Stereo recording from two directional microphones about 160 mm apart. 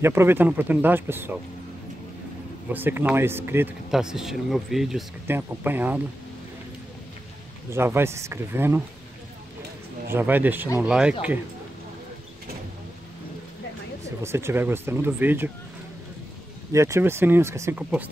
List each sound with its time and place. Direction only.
0.0 s speech: 15° right (ahead or behind)
2.7 s speech: 15° right (ahead or behind)
3.9 s speech: 5° right (ahead or behind)
5.2 s speech: 15° right (ahead or behind)
7.7 s speech: 15° right (ahead or behind)
10.1 s speech: 10° right (ahead or behind)
14.0 s speech: 15° right (ahead or behind)
16.7 s speech: 20° right (ahead or behind)